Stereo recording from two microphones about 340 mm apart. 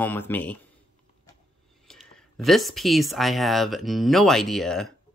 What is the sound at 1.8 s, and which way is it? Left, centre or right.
Speech, centre.